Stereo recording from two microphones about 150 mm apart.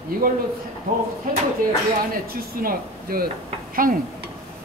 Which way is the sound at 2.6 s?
80° right.